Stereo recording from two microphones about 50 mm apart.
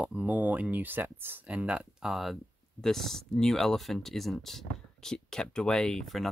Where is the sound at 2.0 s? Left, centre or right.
Centre.